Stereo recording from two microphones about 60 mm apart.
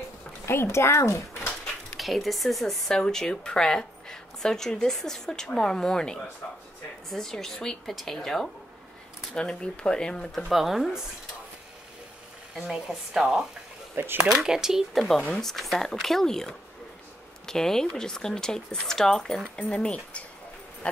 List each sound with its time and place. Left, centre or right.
0.5 s speech: left
2.0 s speech: centre
10.3 s speech: centre
12.5 s a woman's voice: centre
13.9 s speech: right
14.3 s a woman's voice: centre
20.8 s a sound: centre